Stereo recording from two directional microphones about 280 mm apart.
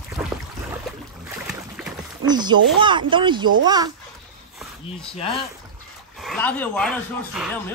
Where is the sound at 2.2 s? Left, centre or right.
Centre.